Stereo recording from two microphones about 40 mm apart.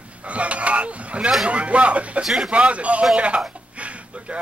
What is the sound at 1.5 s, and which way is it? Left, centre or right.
Speech, right.